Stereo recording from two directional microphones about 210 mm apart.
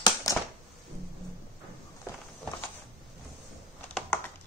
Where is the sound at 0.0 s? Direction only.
15° left (ahead or behind).